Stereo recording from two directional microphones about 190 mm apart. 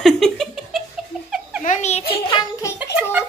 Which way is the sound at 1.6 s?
40° left (ahead or behind).